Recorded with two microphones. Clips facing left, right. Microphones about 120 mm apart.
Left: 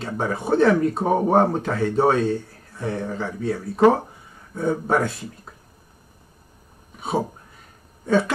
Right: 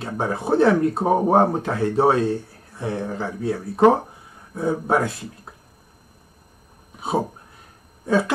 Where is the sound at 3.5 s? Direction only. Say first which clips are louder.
Right 1 dB; 25° right (ahead or behind).